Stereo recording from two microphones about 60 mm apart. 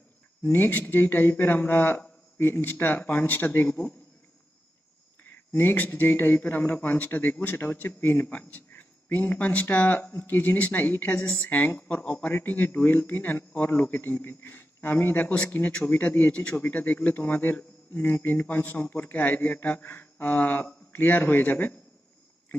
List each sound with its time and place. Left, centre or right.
0.5 s a man's voice: left
5.2 s a man's voice: left
15.2 s a man's voice: centre